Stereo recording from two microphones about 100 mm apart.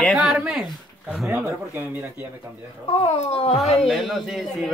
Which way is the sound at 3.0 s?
75° left (ahead or behind).